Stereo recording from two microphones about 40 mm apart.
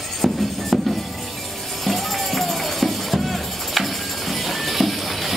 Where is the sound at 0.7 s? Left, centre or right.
Centre.